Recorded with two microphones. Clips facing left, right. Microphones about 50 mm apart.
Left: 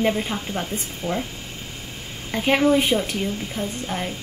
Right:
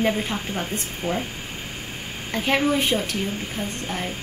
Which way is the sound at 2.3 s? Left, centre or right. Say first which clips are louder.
Left 3 dB; centre.